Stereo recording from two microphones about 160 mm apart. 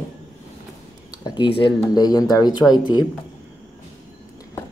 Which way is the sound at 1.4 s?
30° left (ahead or behind).